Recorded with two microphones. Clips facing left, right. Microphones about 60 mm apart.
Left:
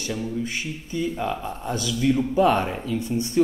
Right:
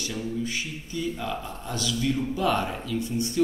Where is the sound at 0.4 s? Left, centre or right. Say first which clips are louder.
Left 2 dB; left.